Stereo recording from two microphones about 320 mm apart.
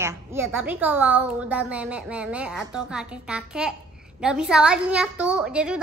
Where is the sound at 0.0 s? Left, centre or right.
Centre.